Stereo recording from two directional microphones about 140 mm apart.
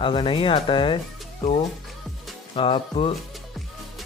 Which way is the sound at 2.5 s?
40° left (ahead or behind).